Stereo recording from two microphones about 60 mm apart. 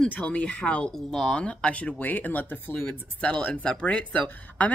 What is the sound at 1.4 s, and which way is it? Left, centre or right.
Speech, left.